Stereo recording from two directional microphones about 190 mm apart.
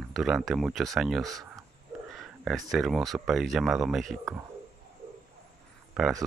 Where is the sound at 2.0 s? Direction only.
Centre (ahead or behind).